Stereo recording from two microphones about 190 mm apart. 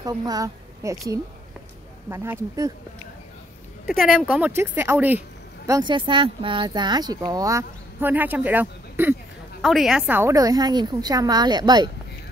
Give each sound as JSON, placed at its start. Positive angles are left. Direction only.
{"t": 0.0, "sound": "a woman's voice", "side_deg": -20}
{"t": 3.8, "sound": "a woman's voice", "side_deg": 0}
{"t": 5.7, "sound": "speech", "side_deg": -25}